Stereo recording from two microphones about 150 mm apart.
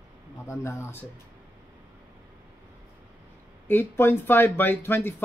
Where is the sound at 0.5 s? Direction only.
20° left (ahead or behind).